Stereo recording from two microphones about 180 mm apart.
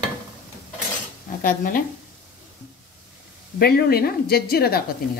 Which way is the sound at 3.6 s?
60° left (ahead or behind).